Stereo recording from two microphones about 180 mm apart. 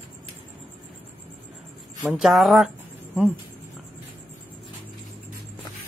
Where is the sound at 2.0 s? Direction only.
Centre (ahead or behind).